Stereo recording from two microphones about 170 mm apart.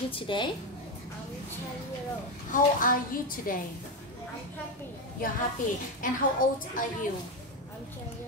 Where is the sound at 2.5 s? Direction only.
55° left (ahead or behind).